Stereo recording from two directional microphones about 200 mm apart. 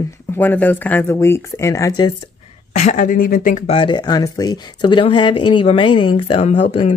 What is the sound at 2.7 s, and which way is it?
Speech, 35° left (ahead or behind).